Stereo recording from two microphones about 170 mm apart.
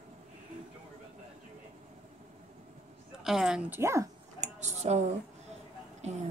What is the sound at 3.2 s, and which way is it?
Speech, 5° right (ahead or behind).